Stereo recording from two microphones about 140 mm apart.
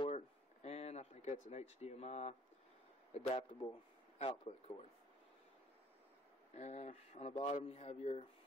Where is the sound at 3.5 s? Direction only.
50° left (ahead or behind).